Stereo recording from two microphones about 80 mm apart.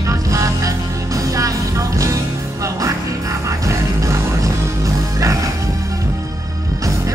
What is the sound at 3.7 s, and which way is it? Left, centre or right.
Music, right.